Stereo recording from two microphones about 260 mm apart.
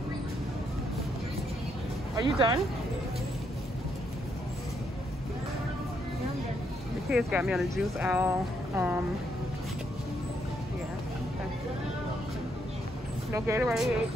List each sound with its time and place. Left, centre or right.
2.1 s speech: centre
7.1 s speech: centre
13.3 s speech: centre